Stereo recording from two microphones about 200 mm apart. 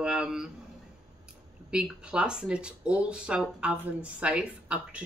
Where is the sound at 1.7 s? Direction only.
5° right (ahead or behind).